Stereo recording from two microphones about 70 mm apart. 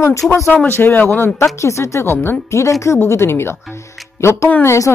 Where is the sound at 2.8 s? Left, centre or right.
Left.